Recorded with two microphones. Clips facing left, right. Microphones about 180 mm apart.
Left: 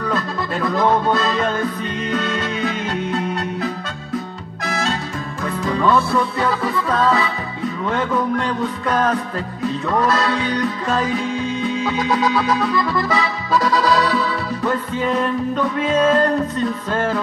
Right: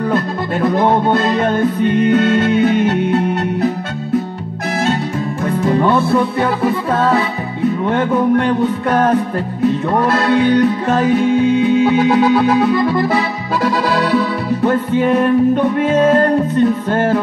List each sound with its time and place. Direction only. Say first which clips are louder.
0.6 s music: right 4 dB; 25° right (ahead or behind)
1.9 s music: right 10 dB; 60° right (ahead or behind)
5.4 s music: right 5 dB; 25° right (ahead or behind)
7.8 s music: right 4 dB; 20° right (ahead or behind)
10.0 s music: right 6 dB; 60° right (ahead or behind)
13.7 s music: right 3 dB; 60° right (ahead or behind)
15.0 s music: right 8 dB; 20° right (ahead or behind)